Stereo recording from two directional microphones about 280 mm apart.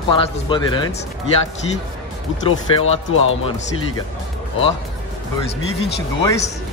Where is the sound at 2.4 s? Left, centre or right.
Centre.